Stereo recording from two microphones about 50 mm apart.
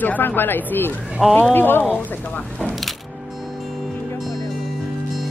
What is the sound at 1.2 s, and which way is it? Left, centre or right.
Speech, centre.